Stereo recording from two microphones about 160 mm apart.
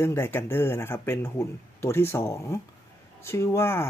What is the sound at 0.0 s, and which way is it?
Speech, 15° left (ahead or behind).